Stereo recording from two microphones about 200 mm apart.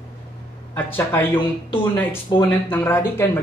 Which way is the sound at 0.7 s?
10° left (ahead or behind).